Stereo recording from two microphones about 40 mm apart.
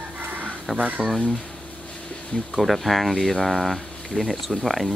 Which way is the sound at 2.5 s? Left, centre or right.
Centre.